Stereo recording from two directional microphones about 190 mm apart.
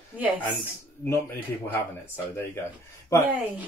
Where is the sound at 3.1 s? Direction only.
15° left (ahead or behind).